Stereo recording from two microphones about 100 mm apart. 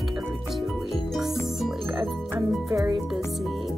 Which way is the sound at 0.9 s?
Centre (ahead or behind).